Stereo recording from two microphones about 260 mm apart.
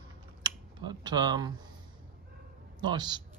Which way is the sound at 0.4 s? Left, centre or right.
Centre.